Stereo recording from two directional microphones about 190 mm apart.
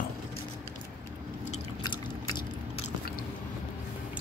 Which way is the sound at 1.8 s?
25° left (ahead or behind).